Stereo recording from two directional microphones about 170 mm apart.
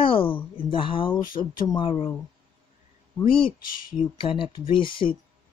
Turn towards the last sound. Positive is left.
turn(degrees=30)  # may be behind; listen again after turning